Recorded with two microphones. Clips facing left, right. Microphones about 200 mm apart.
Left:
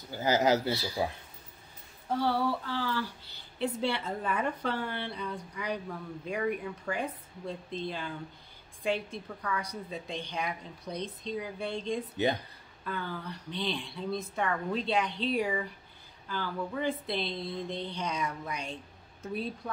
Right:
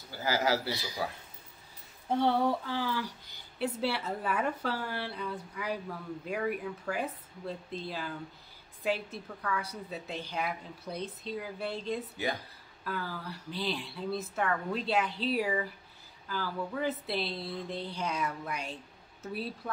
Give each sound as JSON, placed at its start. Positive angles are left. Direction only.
{"t": 0.1, "sound": "a man's voice", "side_deg": 20}
{"t": 2.0, "sound": "a woman's voice", "side_deg": -20}